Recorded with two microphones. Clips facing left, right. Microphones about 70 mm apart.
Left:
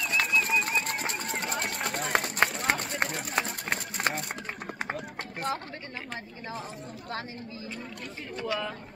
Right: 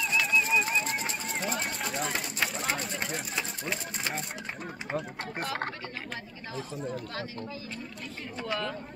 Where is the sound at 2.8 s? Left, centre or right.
Left.